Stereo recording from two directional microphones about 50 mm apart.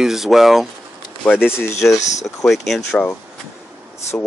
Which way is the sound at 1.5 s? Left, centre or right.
Left.